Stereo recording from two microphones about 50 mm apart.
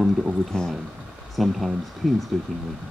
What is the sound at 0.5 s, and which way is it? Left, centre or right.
Speech, centre.